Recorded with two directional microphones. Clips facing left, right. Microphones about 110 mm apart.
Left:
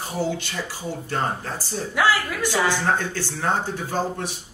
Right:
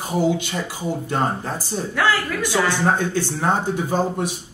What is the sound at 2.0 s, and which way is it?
Speech, 5° left (ahead or behind).